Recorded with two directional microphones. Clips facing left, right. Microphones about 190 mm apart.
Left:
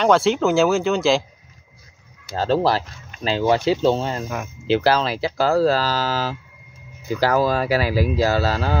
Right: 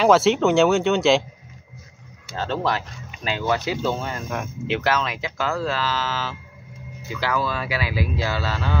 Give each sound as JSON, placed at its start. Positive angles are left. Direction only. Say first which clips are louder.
{"t": 0.0, "sound": "speech", "louder": "even", "side_deg": 0}
{"t": 2.2, "sound": "speech", "louder": "left 6 dB", "side_deg": 35}